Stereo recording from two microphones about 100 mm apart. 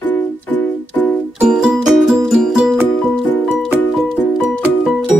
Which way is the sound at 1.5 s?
5° right (ahead or behind).